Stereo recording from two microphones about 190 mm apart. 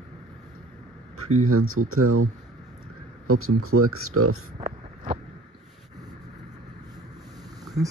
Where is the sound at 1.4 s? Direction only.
90° right.